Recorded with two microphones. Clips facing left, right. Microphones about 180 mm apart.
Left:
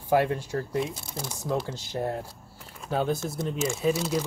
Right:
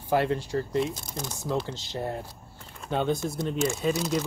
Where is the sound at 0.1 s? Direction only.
10° left (ahead or behind).